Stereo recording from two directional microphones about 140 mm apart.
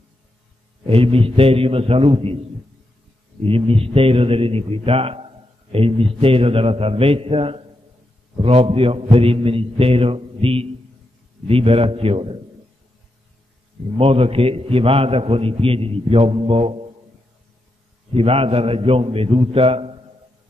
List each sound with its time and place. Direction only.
0.8 s a man's voice: 45° right (ahead or behind)
3.4 s a man's voice: 40° right (ahead or behind)
13.9 s a man's voice: 45° right (ahead or behind)
18.1 s a man's voice: 45° right (ahead or behind)